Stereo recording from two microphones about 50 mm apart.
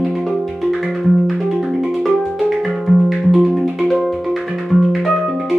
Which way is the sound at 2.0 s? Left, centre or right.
Centre.